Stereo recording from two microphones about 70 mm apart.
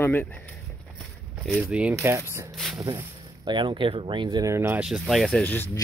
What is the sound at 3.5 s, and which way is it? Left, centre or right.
Speech, right.